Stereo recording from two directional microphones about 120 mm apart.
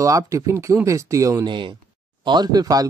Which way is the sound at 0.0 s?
25° right (ahead or behind).